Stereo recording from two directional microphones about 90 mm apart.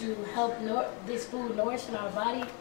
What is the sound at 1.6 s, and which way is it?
Speech, 25° left (ahead or behind).